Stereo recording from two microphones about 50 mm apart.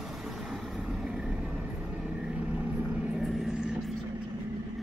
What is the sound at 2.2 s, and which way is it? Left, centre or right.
Vehicle, right.